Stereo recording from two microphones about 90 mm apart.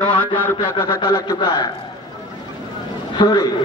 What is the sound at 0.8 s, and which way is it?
Speech, 45° left (ahead or behind).